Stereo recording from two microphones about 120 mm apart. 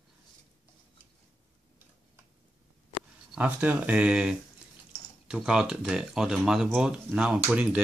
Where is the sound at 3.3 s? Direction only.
10° right (ahead or behind).